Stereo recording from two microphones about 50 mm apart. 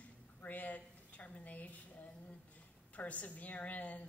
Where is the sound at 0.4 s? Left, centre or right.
Left.